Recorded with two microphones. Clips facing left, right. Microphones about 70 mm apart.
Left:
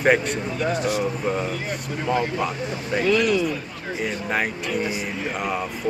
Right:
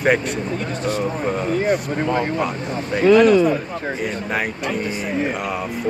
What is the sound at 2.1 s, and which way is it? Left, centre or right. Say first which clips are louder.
A man's voice: right 2 dB; right.